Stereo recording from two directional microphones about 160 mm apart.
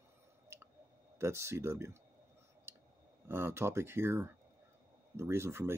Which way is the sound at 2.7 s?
15° right (ahead or behind).